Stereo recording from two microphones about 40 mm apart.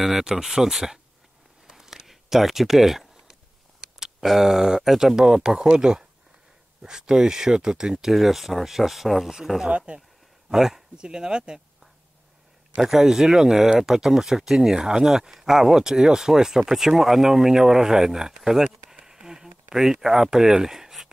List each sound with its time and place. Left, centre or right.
0.2 s speech: centre
1.7 s a sound: centre
4.0 s speech: centre
8.1 s speech: centre
9.7 s speech: right
10.5 s a man's voice: centre
12.7 s speech: centre